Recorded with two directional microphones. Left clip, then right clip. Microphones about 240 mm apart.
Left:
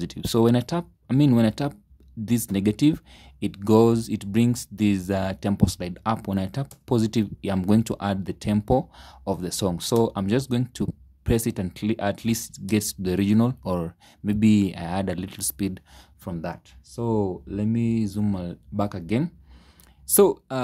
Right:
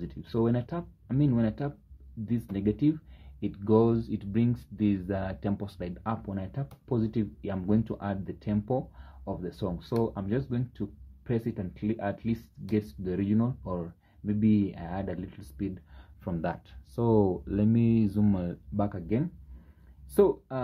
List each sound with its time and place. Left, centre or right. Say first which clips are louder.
0.0 s speech: left 8 dB; left
16.3 s speech: even; centre
18.8 s speech: left 5 dB; left